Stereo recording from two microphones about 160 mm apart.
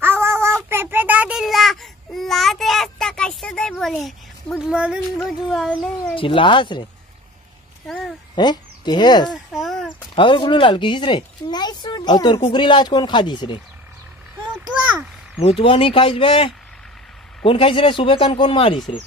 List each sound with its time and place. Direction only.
0.0 s child singing: 15° right (ahead or behind)
0.7 s babbling: 15° right (ahead or behind)
5.2 s speech: 5° left (ahead or behind)
6.1 s speech: 35° left (ahead or behind)
7.8 s a sound: 5° left (ahead or behind)
8.4 s speech: 25° left (ahead or behind)
9.3 s a sound: centre (ahead or behind)
10.1 s speech: 30° left (ahead or behind)
14.7 s a sound: 10° right (ahead or behind)
15.4 s speech: 35° left (ahead or behind)